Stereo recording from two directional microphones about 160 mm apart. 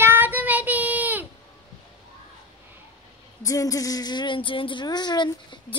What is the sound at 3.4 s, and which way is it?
A woman's voice, 20° left (ahead or behind).